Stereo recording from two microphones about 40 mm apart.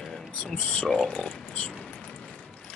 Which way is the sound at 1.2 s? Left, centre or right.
Left.